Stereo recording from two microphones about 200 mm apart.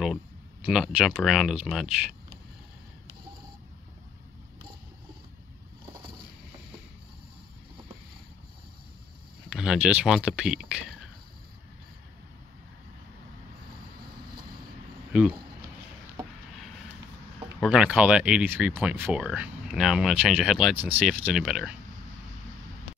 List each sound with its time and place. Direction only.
0.7 s speech: 5° right (ahead or behind)
9.5 s speech: 5° right (ahead or behind)
17.6 s speech: 5° right (ahead or behind)